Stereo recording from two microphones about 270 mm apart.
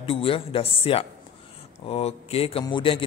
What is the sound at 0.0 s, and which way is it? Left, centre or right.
A man's voice, centre.